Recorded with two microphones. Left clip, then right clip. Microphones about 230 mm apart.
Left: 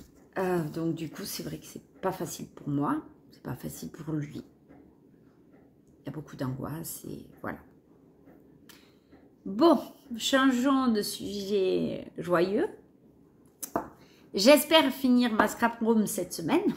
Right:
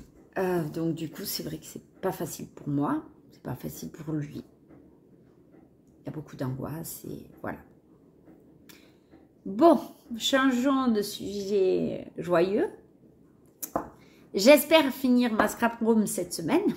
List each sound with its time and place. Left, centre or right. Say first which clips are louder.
0.3 s a woman's voice: right 1 dB; centre
6.0 s a woman's voice: right 1 dB; centre
9.6 s a woman's voice: right 3 dB; centre
14.3 s a woman's voice: right 2 dB; centre